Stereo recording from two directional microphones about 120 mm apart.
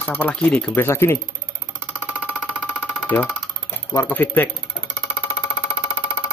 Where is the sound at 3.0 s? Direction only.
15° left (ahead or behind).